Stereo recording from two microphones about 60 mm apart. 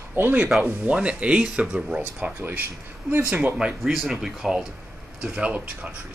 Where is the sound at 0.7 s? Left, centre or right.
Right.